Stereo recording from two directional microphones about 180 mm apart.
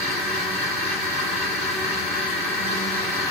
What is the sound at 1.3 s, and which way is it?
Vehicle, centre (ahead or behind).